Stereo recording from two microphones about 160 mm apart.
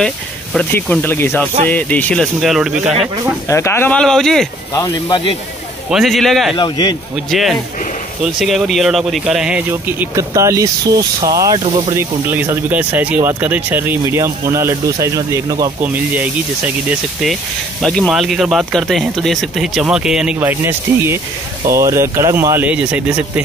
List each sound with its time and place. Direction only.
0.0 s speech: 5° left (ahead or behind)
3.4 s speech: 15° left (ahead or behind)
4.7 s speech: 25° left (ahead or behind)
5.9 s speech: centre (ahead or behind)
6.5 s speech: 30° left (ahead or behind)
7.2 s speech: centre (ahead or behind); by 15.9 s 20° right (ahead or behind)
17.8 s speech: centre (ahead or behind)